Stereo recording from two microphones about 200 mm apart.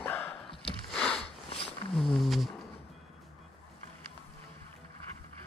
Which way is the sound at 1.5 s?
30° left (ahead or behind).